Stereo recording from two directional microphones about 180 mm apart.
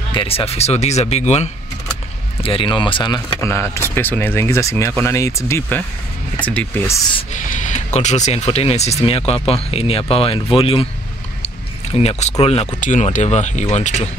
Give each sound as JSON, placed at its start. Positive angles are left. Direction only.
{"t": 0.1, "sound": "speech", "side_deg": 30}
{"t": 3.3, "sound": "speech", "side_deg": 15}
{"t": 7.3, "sound": "speech", "side_deg": 45}